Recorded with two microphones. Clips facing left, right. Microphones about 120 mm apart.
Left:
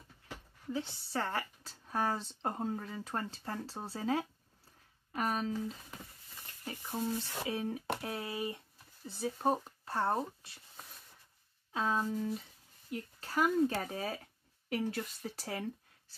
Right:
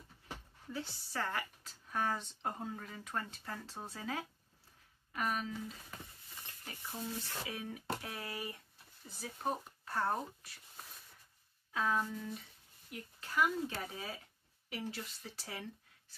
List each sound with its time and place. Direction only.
0.7 s speech: 25° left (ahead or behind)
6.6 s speech: 40° left (ahead or behind)
7.4 s speech: 30° left (ahead or behind)
11.7 s speech: 25° left (ahead or behind)